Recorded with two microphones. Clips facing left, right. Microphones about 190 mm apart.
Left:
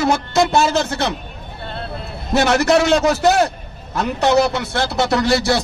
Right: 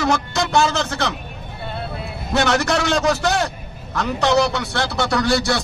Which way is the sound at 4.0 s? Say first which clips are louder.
Left 2 dB; 20° left (ahead or behind).